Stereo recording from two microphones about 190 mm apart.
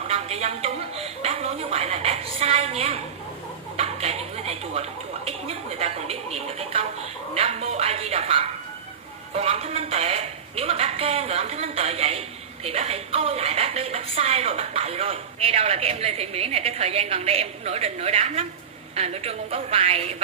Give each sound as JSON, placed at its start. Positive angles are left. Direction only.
{"t": 0.1, "sound": "a woman's voice", "side_deg": -35}